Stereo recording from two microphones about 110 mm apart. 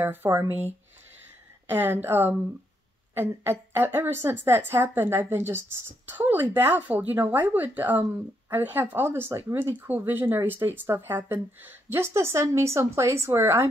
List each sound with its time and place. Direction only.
0.0 s speech: 20° right (ahead or behind)